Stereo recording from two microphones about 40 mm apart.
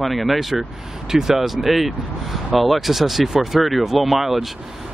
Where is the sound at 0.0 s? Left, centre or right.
Centre.